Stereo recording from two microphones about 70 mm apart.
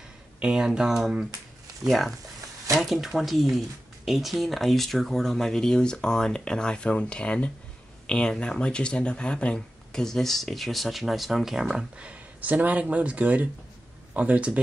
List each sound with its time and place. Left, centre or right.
0.4 s speech: centre
12.0 s speech: centre